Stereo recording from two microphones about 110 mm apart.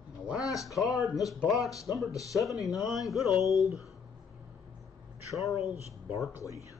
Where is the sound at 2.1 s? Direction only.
30° left (ahead or behind).